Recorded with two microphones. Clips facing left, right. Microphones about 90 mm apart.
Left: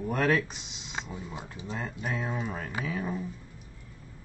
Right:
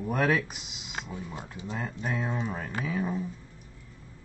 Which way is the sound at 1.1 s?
20° left (ahead or behind).